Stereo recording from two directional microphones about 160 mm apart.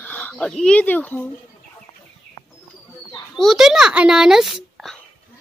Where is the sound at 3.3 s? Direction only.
Centre (ahead or behind).